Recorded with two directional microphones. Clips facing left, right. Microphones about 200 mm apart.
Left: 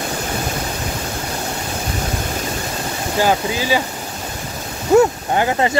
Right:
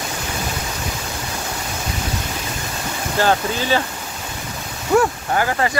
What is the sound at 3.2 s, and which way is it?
Speech, 10° left (ahead or behind).